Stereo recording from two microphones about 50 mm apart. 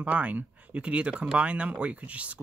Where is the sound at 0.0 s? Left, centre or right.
Right.